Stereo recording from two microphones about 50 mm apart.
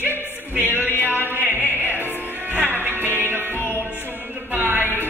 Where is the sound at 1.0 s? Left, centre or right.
Right.